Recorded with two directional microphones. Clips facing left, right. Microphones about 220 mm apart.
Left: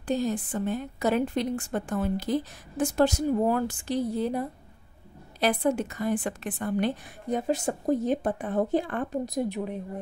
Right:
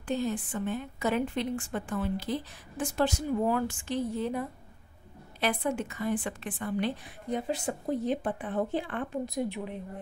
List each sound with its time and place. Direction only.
0.0 s a woman's voice: 40° left (ahead or behind)